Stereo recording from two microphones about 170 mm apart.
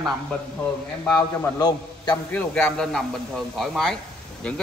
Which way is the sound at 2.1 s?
10° left (ahead or behind).